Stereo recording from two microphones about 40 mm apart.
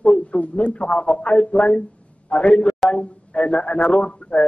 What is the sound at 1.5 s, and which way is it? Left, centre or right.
Speech, centre.